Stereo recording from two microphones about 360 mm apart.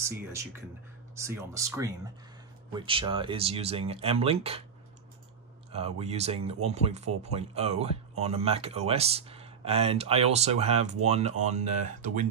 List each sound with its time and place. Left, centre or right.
0.0 s speech: centre
5.7 s speech: centre